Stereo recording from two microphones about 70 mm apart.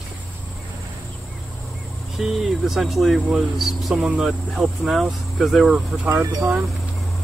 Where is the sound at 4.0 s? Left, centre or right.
Centre.